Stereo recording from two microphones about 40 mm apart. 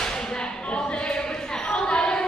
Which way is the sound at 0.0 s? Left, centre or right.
Centre.